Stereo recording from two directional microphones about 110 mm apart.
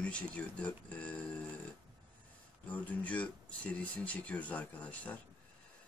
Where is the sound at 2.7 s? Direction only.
15° left (ahead or behind).